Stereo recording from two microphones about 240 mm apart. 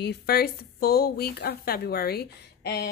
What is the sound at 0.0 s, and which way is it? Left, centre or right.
Speech, left.